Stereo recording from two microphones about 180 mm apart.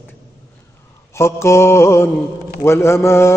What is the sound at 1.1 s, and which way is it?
A man's voice, 15° left (ahead or behind).